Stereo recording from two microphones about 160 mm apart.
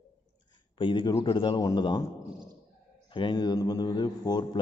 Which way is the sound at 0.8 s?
30° left (ahead or behind).